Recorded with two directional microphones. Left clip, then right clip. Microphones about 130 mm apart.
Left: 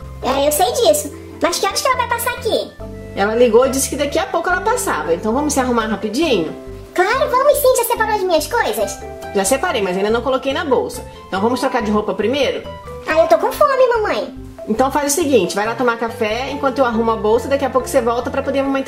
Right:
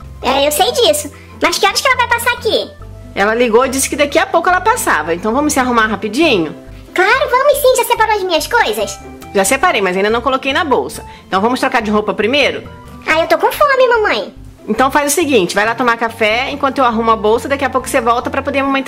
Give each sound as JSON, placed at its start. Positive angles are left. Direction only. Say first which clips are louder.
{"t": 0.2, "sound": "a woman's voice", "louder": "right 3 dB", "side_deg": -30}
{"t": 3.2, "sound": "a woman's voice", "louder": "right 1 dB", "side_deg": -35}
{"t": 14.8, "sound": "a woman's voice", "louder": "right 4 dB", "side_deg": -40}